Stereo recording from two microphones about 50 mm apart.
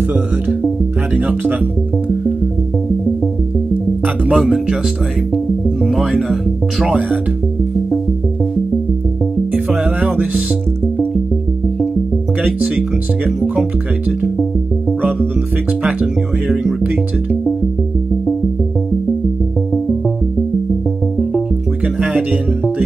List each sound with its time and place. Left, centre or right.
1.1 s speech: right
4.3 s speech: centre
5.9 s speech: centre
10.0 s music: right
12.4 s speech: right
15.8 s speech: right
22.1 s speech: right